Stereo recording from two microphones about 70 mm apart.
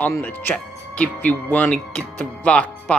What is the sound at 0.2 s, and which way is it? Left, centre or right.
Speech, left.